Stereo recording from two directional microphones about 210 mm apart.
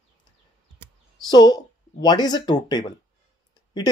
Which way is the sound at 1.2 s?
20° left (ahead or behind).